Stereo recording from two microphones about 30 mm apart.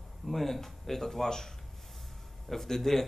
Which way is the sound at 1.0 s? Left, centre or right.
Centre.